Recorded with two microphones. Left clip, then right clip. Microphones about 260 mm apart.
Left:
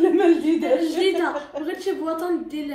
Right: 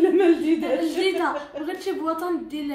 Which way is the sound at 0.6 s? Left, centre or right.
Centre.